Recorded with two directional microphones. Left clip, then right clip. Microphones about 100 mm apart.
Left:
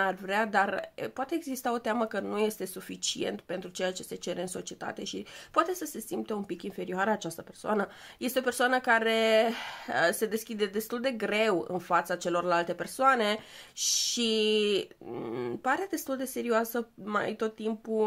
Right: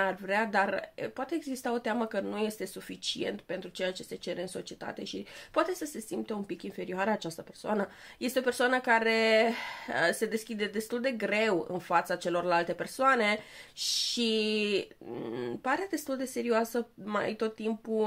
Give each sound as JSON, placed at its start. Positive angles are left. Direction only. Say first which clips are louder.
{"t": 0.3, "sound": "speech", "louder": "left 1 dB", "side_deg": 30}
{"t": 5.6, "sound": "speech", "louder": "left 2 dB", "side_deg": 30}
{"t": 13.7, "sound": "speech", "louder": "left 1 dB", "side_deg": 40}